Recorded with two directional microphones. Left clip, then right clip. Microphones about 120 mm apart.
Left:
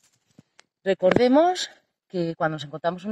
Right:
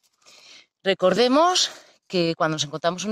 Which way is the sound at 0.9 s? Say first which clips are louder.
Even; 35° right (ahead or behind).